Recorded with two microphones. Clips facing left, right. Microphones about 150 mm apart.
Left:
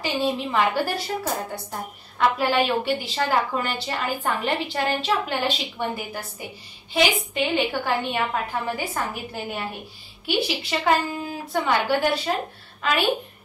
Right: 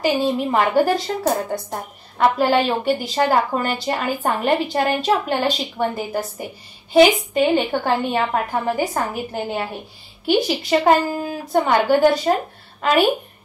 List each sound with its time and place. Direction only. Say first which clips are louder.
0.0 s a woman's voice: right 6 dB; 45° right (ahead or behind)